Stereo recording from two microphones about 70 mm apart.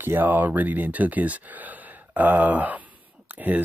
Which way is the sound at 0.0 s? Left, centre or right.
Right.